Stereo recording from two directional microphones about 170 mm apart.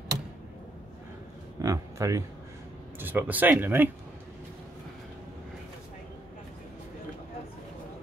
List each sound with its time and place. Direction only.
1.6 s speech: 20° right (ahead or behind)